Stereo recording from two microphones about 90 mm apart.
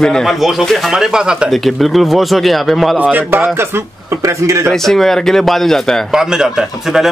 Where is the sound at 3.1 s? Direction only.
25° right (ahead or behind).